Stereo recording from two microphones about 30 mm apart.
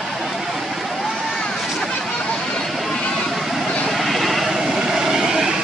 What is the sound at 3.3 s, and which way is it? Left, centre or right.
Vehicle, centre.